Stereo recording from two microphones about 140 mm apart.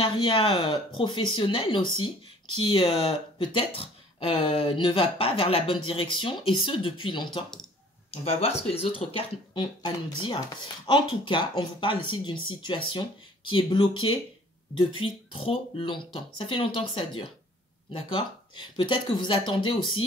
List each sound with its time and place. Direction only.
0.0 s speech: 40° left (ahead or behind)
8.1 s speech: 45° left (ahead or behind)